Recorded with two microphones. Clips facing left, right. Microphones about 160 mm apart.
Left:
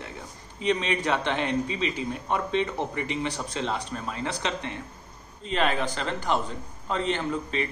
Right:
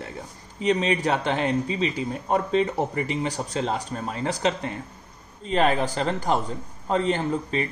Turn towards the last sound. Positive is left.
turn(degrees=-40)  # may be behind; listen again after turning